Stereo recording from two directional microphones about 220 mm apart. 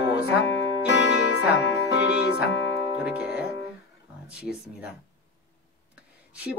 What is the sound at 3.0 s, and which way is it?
Music, 5° right (ahead or behind).